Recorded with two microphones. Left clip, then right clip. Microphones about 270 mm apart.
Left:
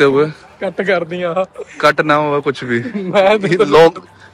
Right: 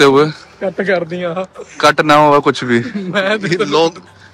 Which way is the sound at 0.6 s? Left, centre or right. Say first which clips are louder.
Even; left.